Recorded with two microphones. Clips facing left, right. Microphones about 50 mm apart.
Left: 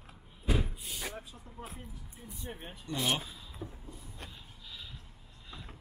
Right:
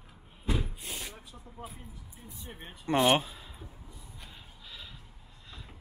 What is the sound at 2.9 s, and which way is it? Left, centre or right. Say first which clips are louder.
Speech: right 9 dB; right.